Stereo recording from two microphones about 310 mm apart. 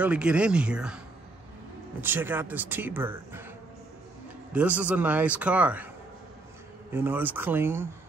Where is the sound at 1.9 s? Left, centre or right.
Centre.